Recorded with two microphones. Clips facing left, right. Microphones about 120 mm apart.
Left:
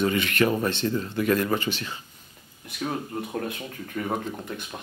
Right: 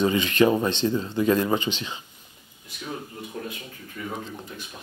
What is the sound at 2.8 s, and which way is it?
Speech, 60° left (ahead or behind).